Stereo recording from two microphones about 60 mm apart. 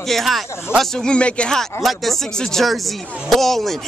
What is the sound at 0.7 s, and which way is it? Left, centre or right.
Speech, centre.